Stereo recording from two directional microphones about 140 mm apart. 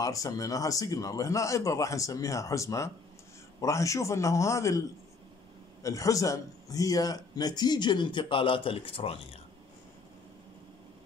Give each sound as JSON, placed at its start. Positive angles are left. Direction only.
{"t": 0.0, "sound": "a man's voice", "side_deg": 25}